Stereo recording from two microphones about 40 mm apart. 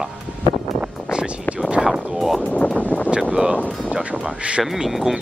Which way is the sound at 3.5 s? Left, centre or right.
Left.